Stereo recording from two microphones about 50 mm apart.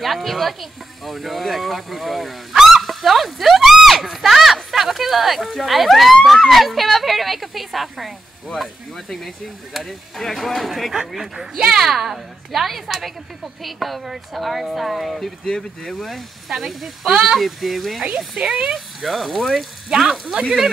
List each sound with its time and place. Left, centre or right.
0.0 s speech: centre
15.4 s speech: centre
16.4 s speech: centre
17.1 s speech: centre
17.4 s speech: centre
18.1 s speech: centre
18.9 s speech: centre